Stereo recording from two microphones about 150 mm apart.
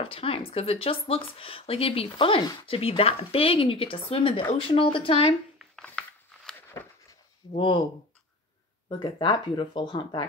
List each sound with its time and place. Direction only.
0.0 s speech: 40° left (ahead or behind)
5.9 s a sound: 5° left (ahead or behind)
7.5 s speech: 35° left (ahead or behind)
8.8 s speech: 30° left (ahead or behind)